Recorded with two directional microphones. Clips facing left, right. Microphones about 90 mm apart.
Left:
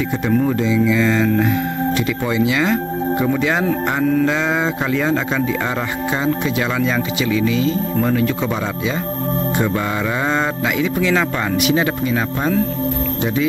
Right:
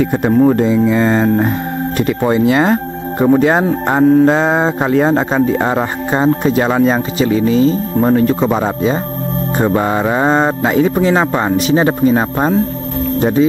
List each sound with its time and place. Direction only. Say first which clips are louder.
0.0 s speech: right 7 dB; 50° right (ahead or behind)
0.3 s speech: right 6 dB; 40° right (ahead or behind)